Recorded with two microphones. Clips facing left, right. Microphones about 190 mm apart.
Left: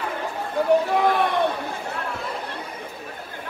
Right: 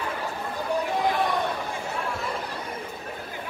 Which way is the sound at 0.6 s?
60° left (ahead or behind).